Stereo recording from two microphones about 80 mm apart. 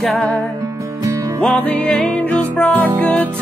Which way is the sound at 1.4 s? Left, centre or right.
Centre.